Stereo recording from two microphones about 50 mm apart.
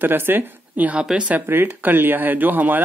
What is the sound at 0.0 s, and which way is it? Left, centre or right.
Speech, right.